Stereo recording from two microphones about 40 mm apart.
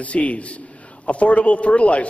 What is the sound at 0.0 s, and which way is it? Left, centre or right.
A man's voice, left.